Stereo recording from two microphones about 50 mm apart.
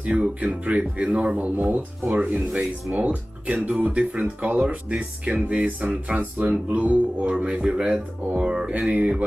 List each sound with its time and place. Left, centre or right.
0.0 s speech: right